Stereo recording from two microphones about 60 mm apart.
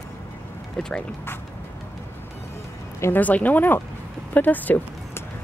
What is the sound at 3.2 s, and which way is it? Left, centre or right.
Speech, left.